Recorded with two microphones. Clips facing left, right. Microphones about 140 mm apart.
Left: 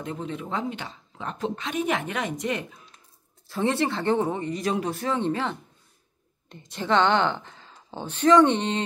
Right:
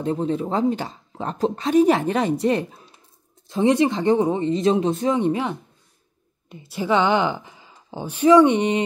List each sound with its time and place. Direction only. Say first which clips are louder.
0.0 s speech: right 10 dB; 35° right (ahead or behind)
3.4 s a woman's voice: right 7 dB; 20° right (ahead or behind)